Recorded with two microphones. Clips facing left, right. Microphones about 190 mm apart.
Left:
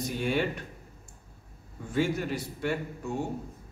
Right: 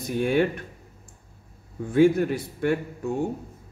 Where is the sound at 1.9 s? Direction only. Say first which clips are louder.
Right 9 dB; 55° right (ahead or behind).